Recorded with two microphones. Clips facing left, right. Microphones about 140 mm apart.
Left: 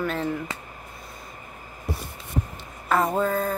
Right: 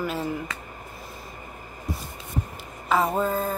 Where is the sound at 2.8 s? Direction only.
Centre (ahead or behind).